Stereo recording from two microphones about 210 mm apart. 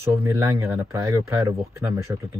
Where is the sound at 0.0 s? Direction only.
15° right (ahead or behind).